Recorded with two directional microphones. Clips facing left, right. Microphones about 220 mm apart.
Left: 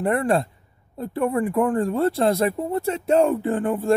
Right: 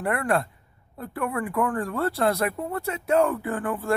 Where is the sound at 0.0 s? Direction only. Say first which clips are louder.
Left 4 dB; 25° left (ahead or behind).